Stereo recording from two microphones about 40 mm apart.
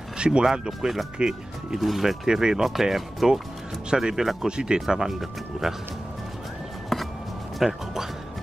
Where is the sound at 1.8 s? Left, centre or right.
Centre.